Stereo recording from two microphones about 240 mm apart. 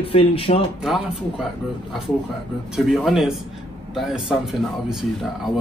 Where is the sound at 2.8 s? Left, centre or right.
Centre.